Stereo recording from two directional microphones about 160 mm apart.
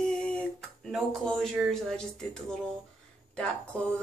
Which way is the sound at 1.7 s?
5° left (ahead or behind).